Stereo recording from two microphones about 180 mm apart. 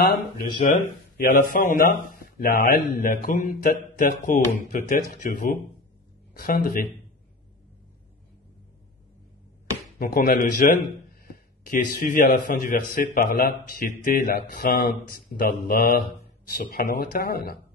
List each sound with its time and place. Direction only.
0.6 s speech: 50° left (ahead or behind)
9.9 s speech: 50° left (ahead or behind)